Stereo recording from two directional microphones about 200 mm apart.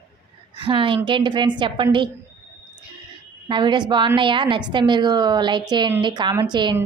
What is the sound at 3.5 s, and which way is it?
A woman's voice, 25° right (ahead or behind).